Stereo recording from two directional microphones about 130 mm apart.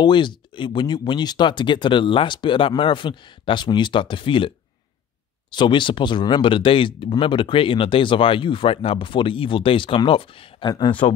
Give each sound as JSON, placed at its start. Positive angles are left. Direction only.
{"t": 0.0, "sound": "speech", "side_deg": 35}